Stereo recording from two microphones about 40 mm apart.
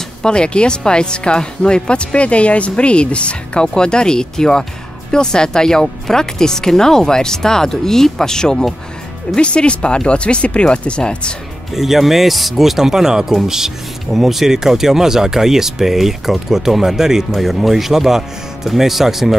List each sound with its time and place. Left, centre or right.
0.2 s speech: left
11.7 s speech: centre